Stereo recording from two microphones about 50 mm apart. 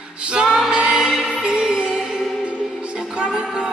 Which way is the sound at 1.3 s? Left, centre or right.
Right.